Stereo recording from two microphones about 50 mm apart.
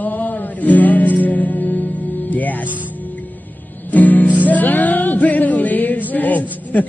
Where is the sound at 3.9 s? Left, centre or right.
Left.